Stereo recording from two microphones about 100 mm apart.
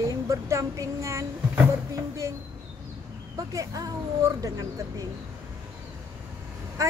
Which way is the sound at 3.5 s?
35° right (ahead or behind).